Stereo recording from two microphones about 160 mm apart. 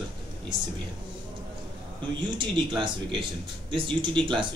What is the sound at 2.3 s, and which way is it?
Speech, 30° right (ahead or behind).